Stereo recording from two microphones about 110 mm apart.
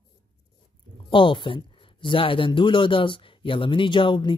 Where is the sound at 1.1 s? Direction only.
50° left (ahead or behind).